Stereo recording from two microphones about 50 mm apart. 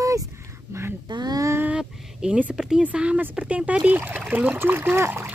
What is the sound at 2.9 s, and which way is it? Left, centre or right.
Speech, right.